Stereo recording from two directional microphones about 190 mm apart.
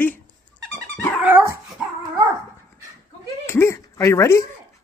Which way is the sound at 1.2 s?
10° right (ahead or behind).